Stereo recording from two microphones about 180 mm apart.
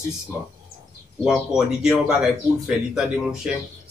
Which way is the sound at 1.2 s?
Centre (ahead or behind).